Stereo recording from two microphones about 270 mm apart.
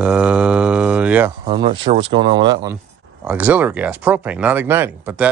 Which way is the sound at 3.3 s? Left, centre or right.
Centre.